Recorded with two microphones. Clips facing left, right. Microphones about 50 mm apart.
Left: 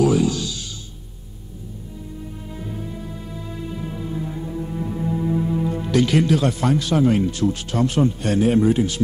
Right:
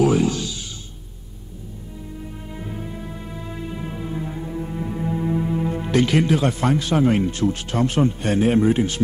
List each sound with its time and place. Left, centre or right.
0.0 s music: right
2.5 s music: right